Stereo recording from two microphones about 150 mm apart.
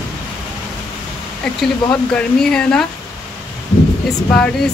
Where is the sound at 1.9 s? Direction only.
5° left (ahead or behind).